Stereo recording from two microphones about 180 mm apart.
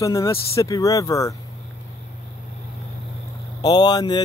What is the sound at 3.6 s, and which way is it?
Speech, 20° left (ahead or behind).